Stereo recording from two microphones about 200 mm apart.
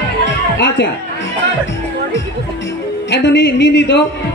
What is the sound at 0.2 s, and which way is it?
Music, 60° left (ahead or behind).